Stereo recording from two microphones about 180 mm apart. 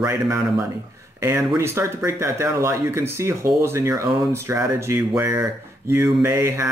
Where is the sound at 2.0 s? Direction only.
15° right (ahead or behind).